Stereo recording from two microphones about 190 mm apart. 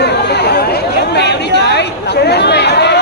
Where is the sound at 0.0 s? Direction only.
60° left (ahead or behind).